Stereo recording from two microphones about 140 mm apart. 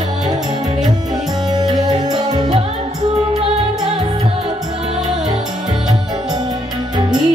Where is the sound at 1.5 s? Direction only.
30° right (ahead or behind).